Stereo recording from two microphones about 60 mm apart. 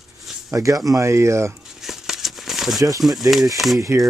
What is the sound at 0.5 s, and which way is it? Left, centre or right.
Speech, right.